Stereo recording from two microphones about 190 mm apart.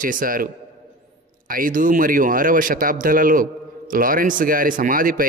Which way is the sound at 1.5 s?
45° right (ahead or behind).